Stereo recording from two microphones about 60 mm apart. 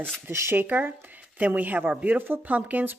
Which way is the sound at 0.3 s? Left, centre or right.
Right.